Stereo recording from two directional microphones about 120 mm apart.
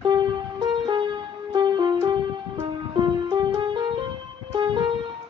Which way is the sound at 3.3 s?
40° right (ahead or behind).